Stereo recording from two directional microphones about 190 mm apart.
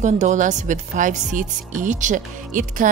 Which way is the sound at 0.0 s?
40° right (ahead or behind).